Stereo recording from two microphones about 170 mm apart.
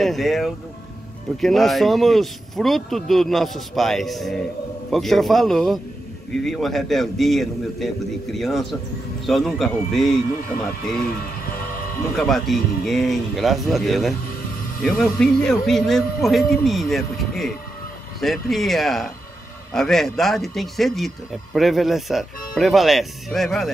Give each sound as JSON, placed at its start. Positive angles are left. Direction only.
{"t": 0.0, "sound": "speech", "side_deg": 0}
{"t": 11.4, "sound": "a sound", "side_deg": 60}
{"t": 12.2, "sound": "speech", "side_deg": 0}